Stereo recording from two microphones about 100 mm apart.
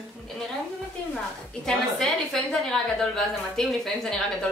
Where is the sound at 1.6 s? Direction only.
5° left (ahead or behind).